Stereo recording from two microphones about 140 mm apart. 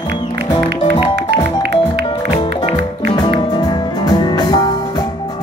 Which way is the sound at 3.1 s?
30° left (ahead or behind).